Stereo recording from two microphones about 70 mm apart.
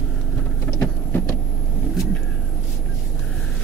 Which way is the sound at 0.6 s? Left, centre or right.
Left.